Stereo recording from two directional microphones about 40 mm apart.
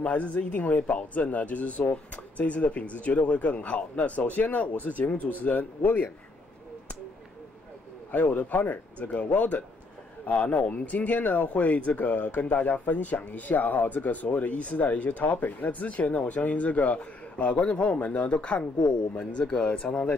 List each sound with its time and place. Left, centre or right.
0.0 s speech: left
8.1 s speech: left